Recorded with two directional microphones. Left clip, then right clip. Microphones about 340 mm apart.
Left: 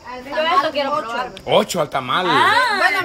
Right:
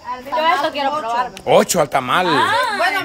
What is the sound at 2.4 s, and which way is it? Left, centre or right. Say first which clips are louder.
Speech: left 2 dB; centre.